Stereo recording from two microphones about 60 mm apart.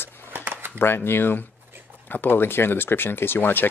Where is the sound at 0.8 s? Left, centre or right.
Left.